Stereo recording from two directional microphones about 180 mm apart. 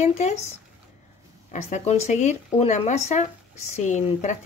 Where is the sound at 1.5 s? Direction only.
40° left (ahead or behind).